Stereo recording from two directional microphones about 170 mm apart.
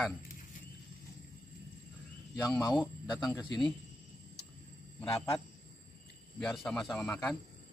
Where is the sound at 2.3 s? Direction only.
20° left (ahead or behind).